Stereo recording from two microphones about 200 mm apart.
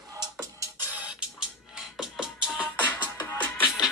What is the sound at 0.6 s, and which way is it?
Music, 10° right (ahead or behind).